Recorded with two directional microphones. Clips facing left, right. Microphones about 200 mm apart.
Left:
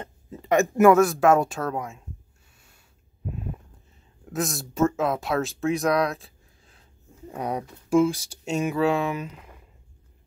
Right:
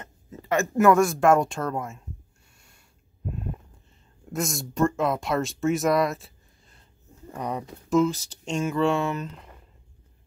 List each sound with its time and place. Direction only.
0.5 s speech: 15° left (ahead or behind)
0.9 s speech: centre (ahead or behind)
4.3 s speech: centre (ahead or behind)
7.2 s speech: 10° left (ahead or behind)